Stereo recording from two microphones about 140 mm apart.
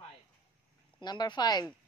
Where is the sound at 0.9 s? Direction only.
30° left (ahead or behind).